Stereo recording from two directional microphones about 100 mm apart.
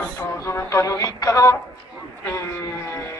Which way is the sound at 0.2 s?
25° left (ahead or behind).